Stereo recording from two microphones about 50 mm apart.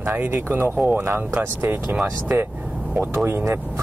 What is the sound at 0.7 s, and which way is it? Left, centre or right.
Speech, right.